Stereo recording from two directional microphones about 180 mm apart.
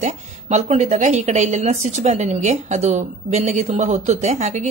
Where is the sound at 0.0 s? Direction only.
40° right (ahead or behind).